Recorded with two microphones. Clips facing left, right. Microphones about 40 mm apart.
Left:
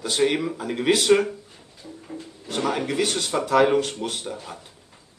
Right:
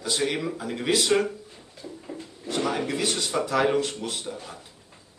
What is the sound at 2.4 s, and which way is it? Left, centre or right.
A man's voice, left.